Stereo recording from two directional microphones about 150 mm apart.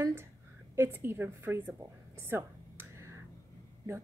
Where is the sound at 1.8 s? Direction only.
15° right (ahead or behind).